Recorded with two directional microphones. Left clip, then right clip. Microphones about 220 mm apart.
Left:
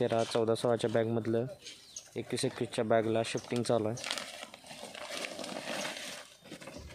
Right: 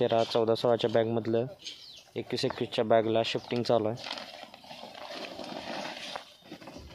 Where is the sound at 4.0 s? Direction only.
30° left (ahead or behind).